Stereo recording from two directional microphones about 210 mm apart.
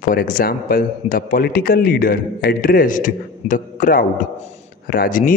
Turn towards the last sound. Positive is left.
turn(degrees=40)  # may be behind; listen again after turning